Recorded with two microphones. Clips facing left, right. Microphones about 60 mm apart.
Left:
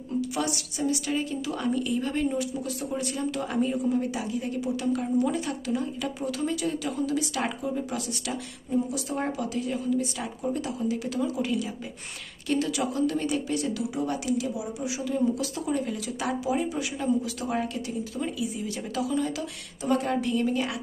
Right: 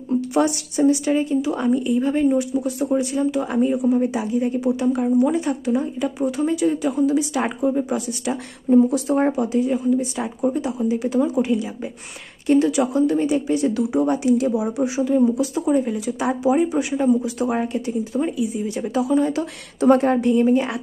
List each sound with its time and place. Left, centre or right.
0.1 s speech: right
8.6 s speech: right
14.5 s speech: right
15.0 s speech: right
19.8 s a woman's voice: right